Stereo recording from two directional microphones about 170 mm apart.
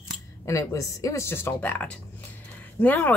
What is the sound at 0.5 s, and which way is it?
Speech, 20° left (ahead or behind).